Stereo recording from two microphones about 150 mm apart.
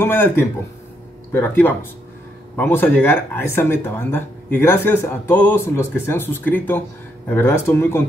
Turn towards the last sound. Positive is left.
turn(degrees=15)  # may be behind; listen again after turning